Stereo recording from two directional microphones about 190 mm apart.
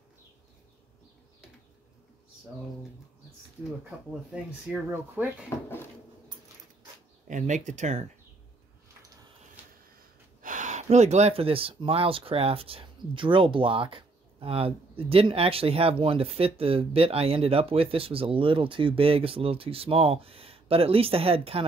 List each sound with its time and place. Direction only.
4.7 s speech: 5° right (ahead or behind)
7.2 s speech: 40° right (ahead or behind)
9.6 s a sound: 10° right (ahead or behind)
10.4 s speech: 40° right (ahead or behind)